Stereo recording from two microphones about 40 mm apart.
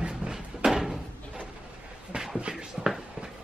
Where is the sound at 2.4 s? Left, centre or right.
Centre.